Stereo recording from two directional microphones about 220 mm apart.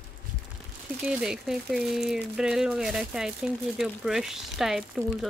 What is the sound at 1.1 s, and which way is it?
Speech, 5° right (ahead or behind).